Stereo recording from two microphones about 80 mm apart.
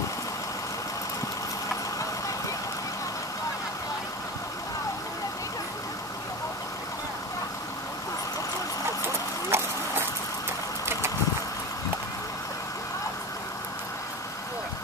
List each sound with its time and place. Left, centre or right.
9.5 s dog: right